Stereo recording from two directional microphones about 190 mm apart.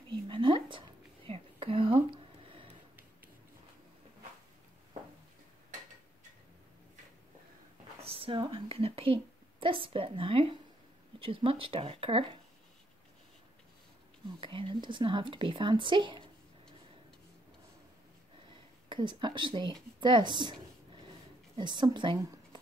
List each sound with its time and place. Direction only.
0.1 s a sound: 25° right (ahead or behind)
8.0 s a sound: 30° right (ahead or behind)
11.1 s speech: 30° right (ahead or behind)
14.4 s speech: 25° right (ahead or behind)
18.9 s speech: 25° right (ahead or behind)
21.5 s a woman's voice: 25° right (ahead or behind)